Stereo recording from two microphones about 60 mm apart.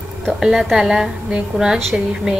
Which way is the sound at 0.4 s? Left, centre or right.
Centre.